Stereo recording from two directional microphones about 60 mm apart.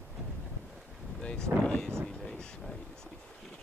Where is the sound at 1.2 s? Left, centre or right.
Centre.